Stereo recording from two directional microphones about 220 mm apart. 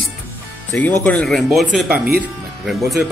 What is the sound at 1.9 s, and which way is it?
Speech, 45° right (ahead or behind).